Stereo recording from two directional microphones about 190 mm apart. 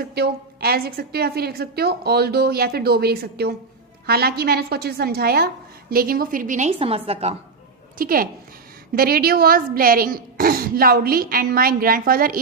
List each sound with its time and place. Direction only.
0.0 s a woman's voice: 55° right (ahead or behind)
6.8 s a woman's voice: 30° right (ahead or behind)
8.0 s a woman's voice: 50° right (ahead or behind)